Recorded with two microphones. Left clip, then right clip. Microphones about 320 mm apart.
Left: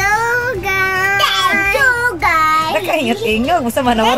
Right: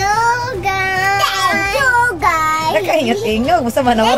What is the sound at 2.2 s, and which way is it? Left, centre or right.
A woman's voice, centre.